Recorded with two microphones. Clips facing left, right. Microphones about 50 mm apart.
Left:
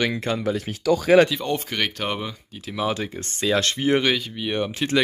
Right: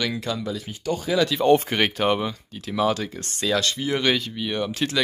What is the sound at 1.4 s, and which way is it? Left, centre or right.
Speech, right.